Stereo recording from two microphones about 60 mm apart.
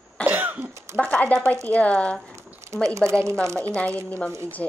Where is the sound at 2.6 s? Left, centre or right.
Right.